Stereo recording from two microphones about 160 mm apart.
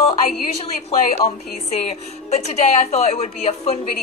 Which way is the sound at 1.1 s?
40° left (ahead or behind).